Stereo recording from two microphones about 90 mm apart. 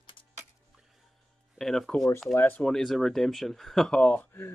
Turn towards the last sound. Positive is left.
turn(degrees=10)  # may be behind; listen again after turning